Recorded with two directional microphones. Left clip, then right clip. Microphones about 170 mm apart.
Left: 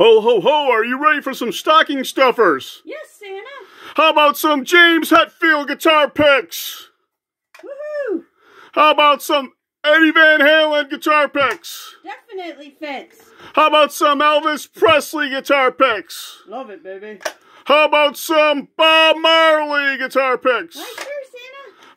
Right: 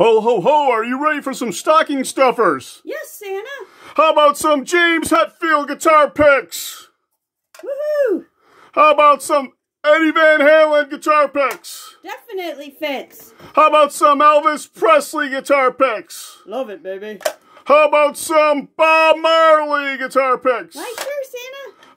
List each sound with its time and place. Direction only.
0.0 s speech: 10° left (ahead or behind)
2.9 s speech: 45° right (ahead or behind)
3.8 s speech: 15° left (ahead or behind)
8.7 s speech: 15° left (ahead or behind)
12.0 s a woman's voice: 50° right (ahead or behind)
13.4 s speech: 15° left (ahead or behind)
16.4 s speech: 45° right (ahead or behind)
17.6 s speech: 15° left (ahead or behind)
21.2 s a sound: 45° right (ahead or behind)